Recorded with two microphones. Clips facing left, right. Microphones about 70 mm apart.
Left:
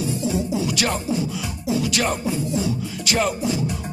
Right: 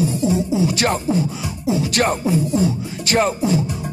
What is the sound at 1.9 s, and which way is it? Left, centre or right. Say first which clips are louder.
Music: right 5 dB; right.